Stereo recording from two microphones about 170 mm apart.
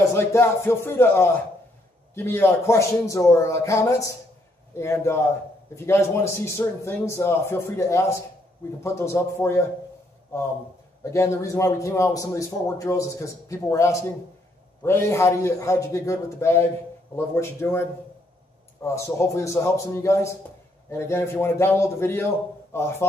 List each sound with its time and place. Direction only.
0.1 s a man's voice: 15° left (ahead or behind)
11.1 s a man's voice: 15° left (ahead or behind)